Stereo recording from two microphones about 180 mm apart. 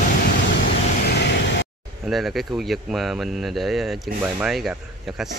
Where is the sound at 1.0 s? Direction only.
65° left (ahead or behind).